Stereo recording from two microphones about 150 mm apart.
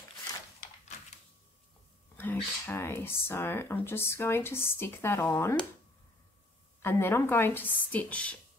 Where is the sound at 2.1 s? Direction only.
15° left (ahead or behind).